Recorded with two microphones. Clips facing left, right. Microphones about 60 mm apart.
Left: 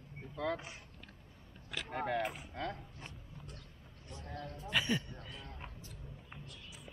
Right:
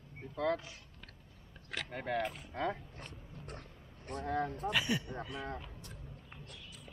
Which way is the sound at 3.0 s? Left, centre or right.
Right.